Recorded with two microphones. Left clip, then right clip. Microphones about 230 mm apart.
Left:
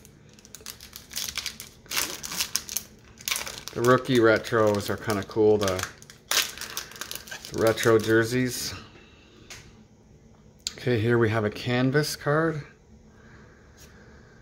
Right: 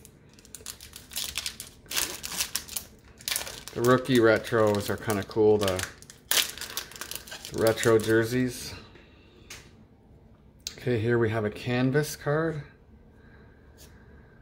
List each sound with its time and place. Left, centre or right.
1.9 s a sound: centre
3.3 s speech: centre
6.3 s crumpling: centre
10.6 s speech: centre